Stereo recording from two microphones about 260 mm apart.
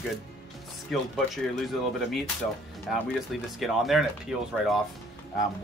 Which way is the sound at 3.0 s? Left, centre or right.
Centre.